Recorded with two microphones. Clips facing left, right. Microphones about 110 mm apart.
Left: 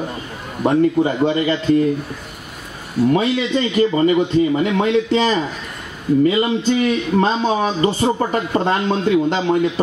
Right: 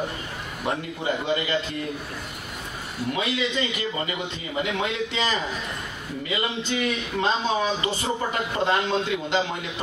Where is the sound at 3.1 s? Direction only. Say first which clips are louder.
Left 9 dB; 40° left (ahead or behind).